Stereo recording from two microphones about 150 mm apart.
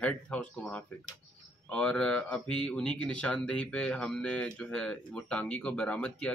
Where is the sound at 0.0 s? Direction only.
10° left (ahead or behind).